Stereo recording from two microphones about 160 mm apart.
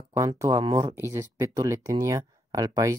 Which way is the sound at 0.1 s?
20° right (ahead or behind).